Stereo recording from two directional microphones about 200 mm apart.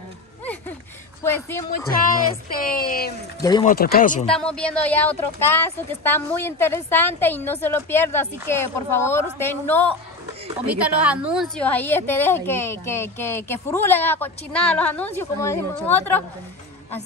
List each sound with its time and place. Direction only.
1.2 s a woman's voice: 10° left (ahead or behind)
2.7 s speech: 45° left (ahead or behind)
3.3 s speech: 20° left (ahead or behind)
3.6 s speech: 50° left (ahead or behind)
4.3 s a woman's voice: 5° left (ahead or behind)
10.7 s a woman's voice: 5° right (ahead or behind); by 16.3 s 10° left (ahead or behind)